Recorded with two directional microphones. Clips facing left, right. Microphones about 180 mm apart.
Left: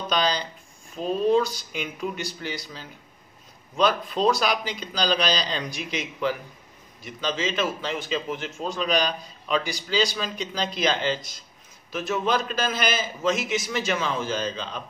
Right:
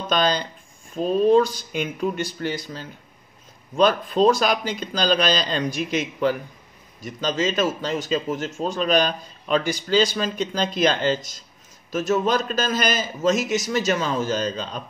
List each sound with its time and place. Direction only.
0.1 s a man's voice: 50° right (ahead or behind)